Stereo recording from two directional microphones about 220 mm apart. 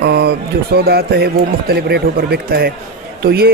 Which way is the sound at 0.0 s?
50° right (ahead or behind).